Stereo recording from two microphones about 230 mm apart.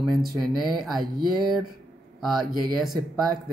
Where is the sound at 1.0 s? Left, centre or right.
Right.